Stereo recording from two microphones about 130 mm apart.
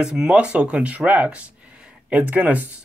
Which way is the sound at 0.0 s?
5° right (ahead or behind).